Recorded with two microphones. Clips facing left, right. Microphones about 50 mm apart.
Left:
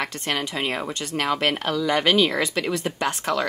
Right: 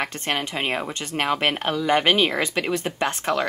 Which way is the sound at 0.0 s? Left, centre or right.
Right.